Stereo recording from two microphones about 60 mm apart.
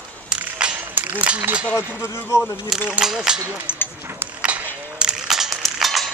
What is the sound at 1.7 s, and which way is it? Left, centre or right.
Speech, left.